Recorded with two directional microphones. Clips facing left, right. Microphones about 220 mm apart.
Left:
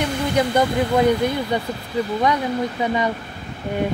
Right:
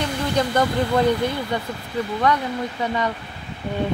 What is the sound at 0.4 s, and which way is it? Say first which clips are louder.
Speech: left 2 dB; 10° left (ahead or behind).